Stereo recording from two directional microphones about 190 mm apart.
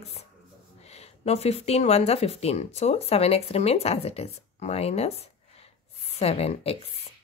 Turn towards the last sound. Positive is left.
turn(degrees=30)  # may be behind; listen again after turning